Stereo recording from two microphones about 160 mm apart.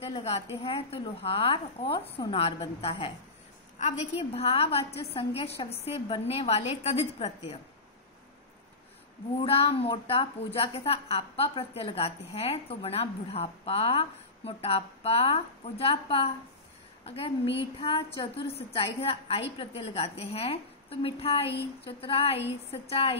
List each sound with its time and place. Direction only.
0.0 s a woman's voice: 40° left (ahead or behind)
9.4 s a woman's voice: 35° left (ahead or behind)